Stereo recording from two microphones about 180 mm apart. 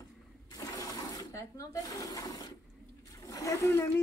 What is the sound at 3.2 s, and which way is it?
Splash, 15° left (ahead or behind).